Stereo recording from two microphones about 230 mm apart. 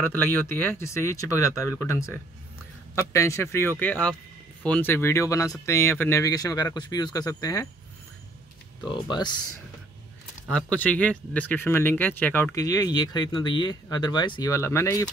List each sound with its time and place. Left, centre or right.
0.0 s speech: centre
8.8 s speech: centre
10.5 s speech: centre